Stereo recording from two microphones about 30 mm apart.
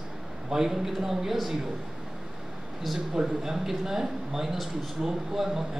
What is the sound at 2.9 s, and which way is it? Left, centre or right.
Speech, centre.